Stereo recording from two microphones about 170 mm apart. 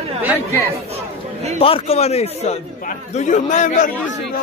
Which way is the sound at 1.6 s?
35° left (ahead or behind).